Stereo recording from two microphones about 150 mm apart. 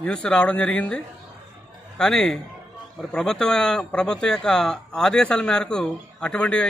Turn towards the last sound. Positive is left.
turn(degrees=5)  # may be behind; listen again after turning